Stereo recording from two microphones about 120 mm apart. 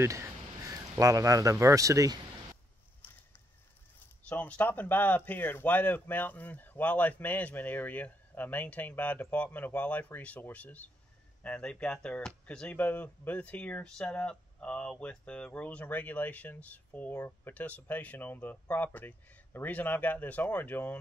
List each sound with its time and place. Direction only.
0.0 s speech: 25° right (ahead or behind)
3.0 s a sound: 20° left (ahead or behind)
4.3 s speech: 10° left (ahead or behind)